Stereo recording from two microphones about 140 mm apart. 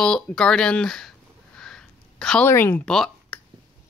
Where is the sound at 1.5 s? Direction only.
5° left (ahead or behind).